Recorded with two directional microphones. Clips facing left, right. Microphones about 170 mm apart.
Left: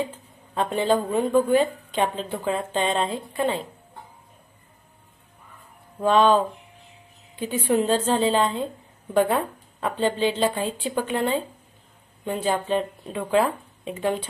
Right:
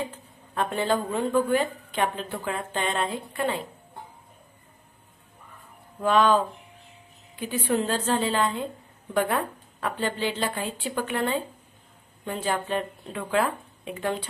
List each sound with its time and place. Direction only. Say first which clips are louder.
0.6 s speech: left 3 dB; 20° left (ahead or behind)
5.9 s a woman's voice: left 3 dB; 25° left (ahead or behind)